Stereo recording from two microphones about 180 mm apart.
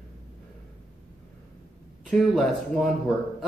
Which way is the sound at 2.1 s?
Centre (ahead or behind).